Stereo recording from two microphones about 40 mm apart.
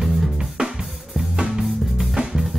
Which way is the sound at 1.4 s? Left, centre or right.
Centre.